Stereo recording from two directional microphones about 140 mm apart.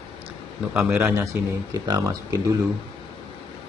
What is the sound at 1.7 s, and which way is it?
Speech, 25° right (ahead or behind).